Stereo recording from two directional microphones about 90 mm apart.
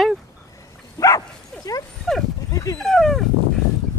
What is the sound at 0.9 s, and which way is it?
Bow-wow, 40° left (ahead or behind).